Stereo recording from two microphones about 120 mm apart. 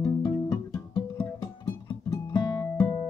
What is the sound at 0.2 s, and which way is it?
Guitar, 30° left (ahead or behind).